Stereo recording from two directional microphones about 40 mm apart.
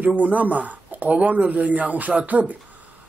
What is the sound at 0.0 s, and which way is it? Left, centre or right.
Speech, right.